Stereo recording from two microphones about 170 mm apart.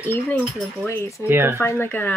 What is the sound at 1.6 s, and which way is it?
Speech, 15° left (ahead or behind).